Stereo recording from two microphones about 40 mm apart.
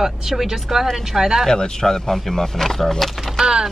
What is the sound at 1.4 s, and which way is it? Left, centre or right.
Speech, centre.